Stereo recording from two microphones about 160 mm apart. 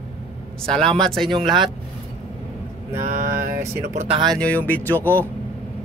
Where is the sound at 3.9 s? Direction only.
35° right (ahead or behind).